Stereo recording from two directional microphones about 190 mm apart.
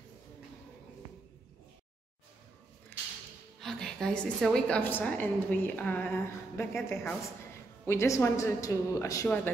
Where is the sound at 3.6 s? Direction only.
5° left (ahead or behind).